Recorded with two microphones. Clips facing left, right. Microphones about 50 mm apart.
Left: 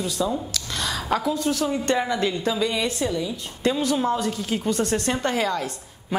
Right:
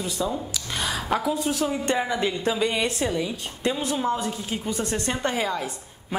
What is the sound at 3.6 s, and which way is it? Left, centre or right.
A woman's voice, centre.